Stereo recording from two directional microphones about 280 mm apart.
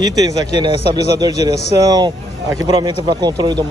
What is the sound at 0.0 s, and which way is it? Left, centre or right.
Speech, centre.